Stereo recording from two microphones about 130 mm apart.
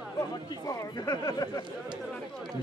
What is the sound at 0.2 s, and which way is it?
Speech, 30° left (ahead or behind).